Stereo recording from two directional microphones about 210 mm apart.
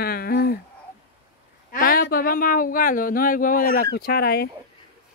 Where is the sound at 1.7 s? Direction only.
40° left (ahead or behind).